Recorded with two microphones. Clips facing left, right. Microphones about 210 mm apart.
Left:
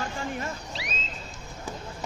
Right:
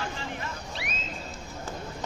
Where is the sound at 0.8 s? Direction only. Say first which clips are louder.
Even; 55° right (ahead or behind).